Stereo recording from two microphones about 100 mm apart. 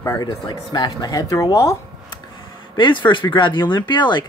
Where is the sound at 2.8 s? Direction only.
55° left (ahead or behind).